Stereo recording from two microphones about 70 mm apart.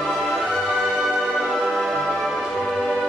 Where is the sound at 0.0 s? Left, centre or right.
Centre.